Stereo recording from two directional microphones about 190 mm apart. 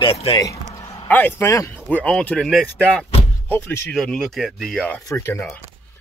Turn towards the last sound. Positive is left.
turn(degrees=15)  # may be behind; listen again after turning